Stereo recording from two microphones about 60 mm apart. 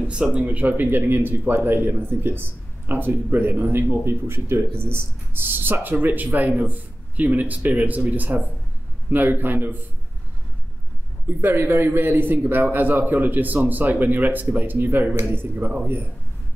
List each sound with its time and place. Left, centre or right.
0.0 s a man's voice: centre; by 9.8 s right
11.2 s a man's voice: right